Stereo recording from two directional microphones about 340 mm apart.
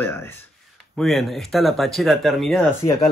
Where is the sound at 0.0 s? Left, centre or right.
Centre.